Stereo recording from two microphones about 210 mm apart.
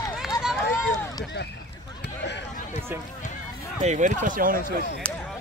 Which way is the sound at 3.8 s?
35° right (ahead or behind).